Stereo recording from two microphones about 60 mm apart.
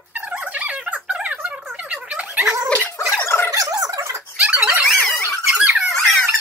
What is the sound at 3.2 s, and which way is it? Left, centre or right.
Gargling, left.